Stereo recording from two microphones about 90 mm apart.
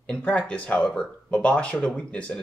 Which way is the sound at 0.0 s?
15° left (ahead or behind).